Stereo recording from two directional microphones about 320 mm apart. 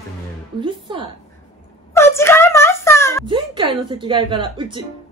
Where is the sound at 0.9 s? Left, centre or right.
Centre.